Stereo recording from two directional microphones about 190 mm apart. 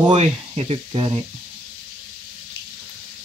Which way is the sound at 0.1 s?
35° right (ahead or behind).